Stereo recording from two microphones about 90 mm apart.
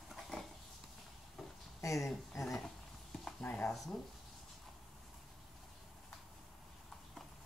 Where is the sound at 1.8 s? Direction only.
35° left (ahead or behind).